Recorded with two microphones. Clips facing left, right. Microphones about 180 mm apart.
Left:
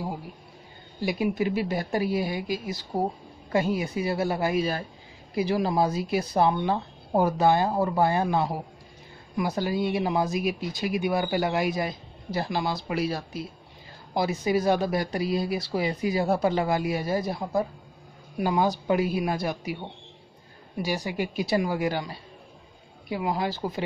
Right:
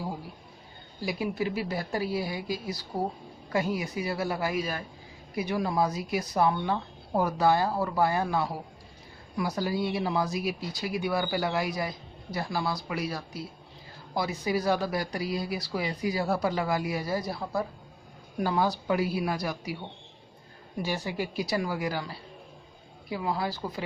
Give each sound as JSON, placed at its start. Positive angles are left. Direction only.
{"t": 1.0, "sound": "speech", "side_deg": 20}
{"t": 20.8, "sound": "speech", "side_deg": 15}